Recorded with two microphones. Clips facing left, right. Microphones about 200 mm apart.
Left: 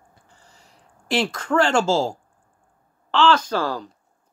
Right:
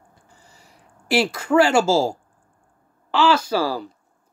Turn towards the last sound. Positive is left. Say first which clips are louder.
# right 2 dB
turn(degrees=-10)  # may be behind; listen again after turning